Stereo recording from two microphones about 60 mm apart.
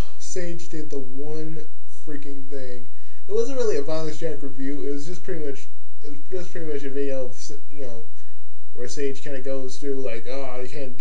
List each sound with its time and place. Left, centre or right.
0.0 s a man's voice: centre